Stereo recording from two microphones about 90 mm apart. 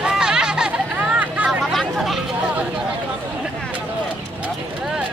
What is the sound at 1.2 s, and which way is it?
Hubbub, 15° right (ahead or behind).